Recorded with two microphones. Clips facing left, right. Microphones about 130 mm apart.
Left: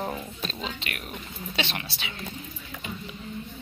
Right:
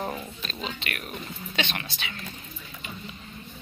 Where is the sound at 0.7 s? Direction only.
20° left (ahead or behind).